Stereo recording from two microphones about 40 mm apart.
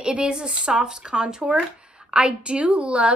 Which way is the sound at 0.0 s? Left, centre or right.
Right.